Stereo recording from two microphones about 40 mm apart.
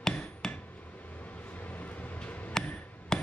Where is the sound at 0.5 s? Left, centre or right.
Left.